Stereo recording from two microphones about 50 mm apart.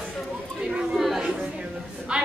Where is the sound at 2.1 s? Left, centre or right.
Right.